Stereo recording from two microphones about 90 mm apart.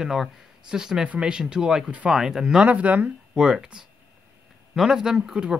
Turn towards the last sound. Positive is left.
turn(degrees=-10)  # may be behind; listen again after turning